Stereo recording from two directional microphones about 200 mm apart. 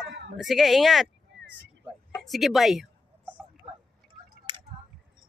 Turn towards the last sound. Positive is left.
turn(degrees=-20)  # may be behind; listen again after turning